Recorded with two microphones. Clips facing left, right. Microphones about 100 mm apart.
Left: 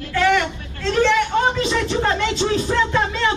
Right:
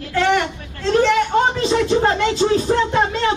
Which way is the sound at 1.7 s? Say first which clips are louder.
Right 4 dB; 35° right (ahead or behind).